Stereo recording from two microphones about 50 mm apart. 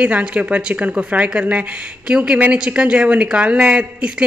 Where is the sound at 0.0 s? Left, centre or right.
Right.